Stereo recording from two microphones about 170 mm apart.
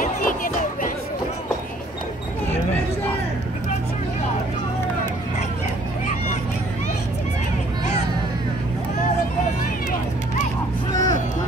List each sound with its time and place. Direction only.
0.0 s music: 55° left (ahead or behind)
10.9 s music: 20° left (ahead or behind)